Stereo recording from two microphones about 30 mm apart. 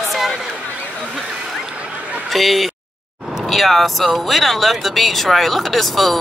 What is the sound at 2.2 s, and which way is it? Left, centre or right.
A man's voice, centre.